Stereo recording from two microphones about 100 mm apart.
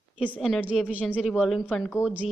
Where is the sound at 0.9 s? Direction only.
15° left (ahead or behind).